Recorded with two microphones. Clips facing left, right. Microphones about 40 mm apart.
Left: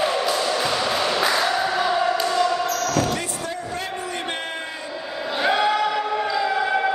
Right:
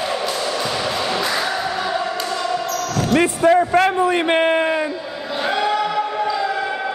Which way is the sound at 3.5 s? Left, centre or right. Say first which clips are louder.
Right 15 dB; right.